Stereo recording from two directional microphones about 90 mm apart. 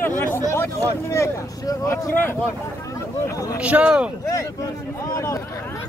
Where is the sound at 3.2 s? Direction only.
40° left (ahead or behind).